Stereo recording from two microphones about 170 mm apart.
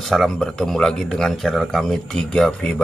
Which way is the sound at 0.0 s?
Centre (ahead or behind).